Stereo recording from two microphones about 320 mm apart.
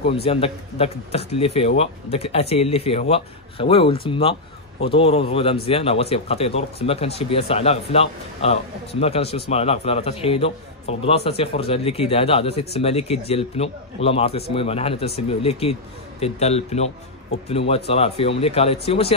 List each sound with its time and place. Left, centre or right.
0.1 s a man's voice: centre